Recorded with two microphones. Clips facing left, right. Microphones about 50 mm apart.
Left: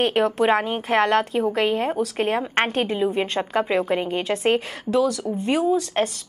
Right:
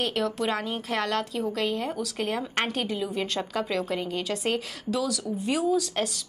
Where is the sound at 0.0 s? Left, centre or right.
Left.